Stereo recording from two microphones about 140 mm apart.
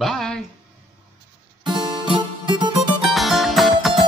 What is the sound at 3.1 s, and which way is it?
Music, centre (ahead or behind).